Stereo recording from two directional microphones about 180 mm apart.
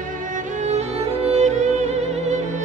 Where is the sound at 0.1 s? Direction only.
45° right (ahead or behind).